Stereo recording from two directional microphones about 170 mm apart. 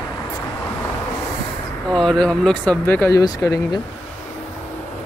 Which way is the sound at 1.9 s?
5° left (ahead or behind).